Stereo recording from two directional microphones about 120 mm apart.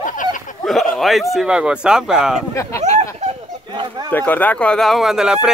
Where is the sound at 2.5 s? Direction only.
25° left (ahead or behind).